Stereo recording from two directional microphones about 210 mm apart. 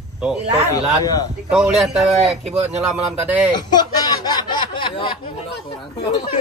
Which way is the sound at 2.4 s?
30° right (ahead or behind).